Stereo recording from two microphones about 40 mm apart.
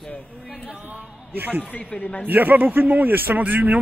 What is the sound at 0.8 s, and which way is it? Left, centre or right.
Speech, right.